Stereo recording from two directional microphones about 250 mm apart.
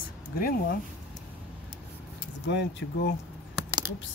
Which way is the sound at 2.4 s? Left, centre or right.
Left.